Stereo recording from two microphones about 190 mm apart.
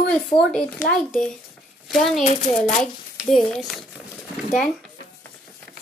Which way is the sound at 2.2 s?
40° left (ahead or behind).